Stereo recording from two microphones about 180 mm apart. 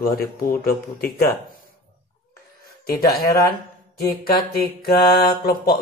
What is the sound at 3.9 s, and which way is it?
Speech, 60° left (ahead or behind).